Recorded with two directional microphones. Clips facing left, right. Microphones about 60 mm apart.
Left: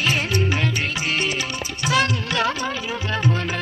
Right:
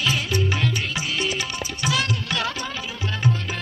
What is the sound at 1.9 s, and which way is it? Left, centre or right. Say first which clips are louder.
Music: left 5 dB; left.